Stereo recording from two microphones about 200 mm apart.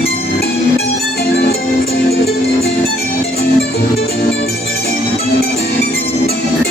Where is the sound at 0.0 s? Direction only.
50° left (ahead or behind).